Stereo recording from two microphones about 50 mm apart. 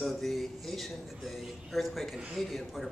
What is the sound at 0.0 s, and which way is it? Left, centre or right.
A man's voice, centre.